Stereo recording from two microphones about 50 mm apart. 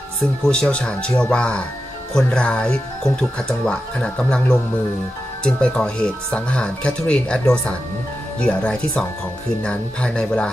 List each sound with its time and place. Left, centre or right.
0.5 s speech: centre